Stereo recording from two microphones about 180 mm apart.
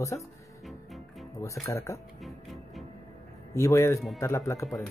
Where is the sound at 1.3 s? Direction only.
15° left (ahead or behind).